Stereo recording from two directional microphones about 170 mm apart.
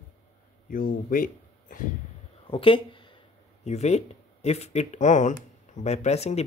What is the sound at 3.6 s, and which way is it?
Speech, 40° left (ahead or behind).